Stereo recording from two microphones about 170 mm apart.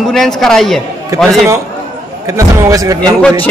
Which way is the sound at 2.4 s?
20° right (ahead or behind).